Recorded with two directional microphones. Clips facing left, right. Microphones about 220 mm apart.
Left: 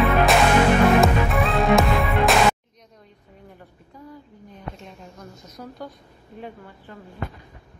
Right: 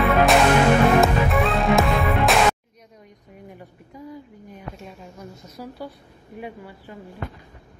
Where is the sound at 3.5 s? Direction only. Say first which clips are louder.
Right 4 dB; 10° right (ahead or behind).